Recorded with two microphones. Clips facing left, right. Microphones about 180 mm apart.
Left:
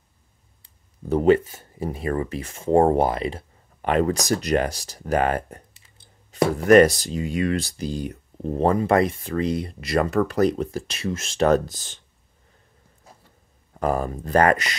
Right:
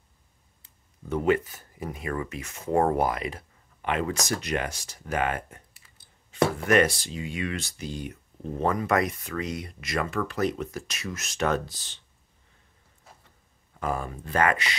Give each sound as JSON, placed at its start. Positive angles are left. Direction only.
{"t": 1.0, "sound": "speech", "side_deg": 35}
{"t": 6.6, "sound": "speech", "side_deg": 40}
{"t": 13.7, "sound": "speech", "side_deg": 40}